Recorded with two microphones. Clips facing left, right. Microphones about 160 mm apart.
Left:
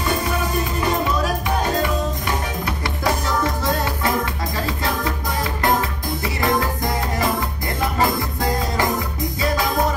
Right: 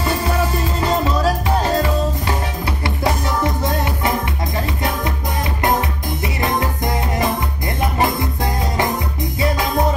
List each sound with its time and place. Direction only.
0.7 s music: 30° right (ahead or behind)
5.6 s music: 20° right (ahead or behind)